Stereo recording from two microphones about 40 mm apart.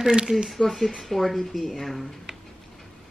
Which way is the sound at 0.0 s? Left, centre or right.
Centre.